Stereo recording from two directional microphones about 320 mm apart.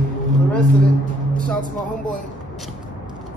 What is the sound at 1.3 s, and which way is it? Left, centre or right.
Music, centre.